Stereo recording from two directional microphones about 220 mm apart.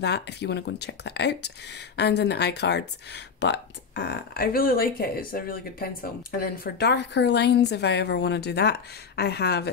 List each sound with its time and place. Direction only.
0.0 s a woman's voice: 50° left (ahead or behind)